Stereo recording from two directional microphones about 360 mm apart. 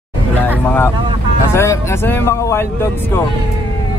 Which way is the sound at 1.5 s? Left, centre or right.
Centre.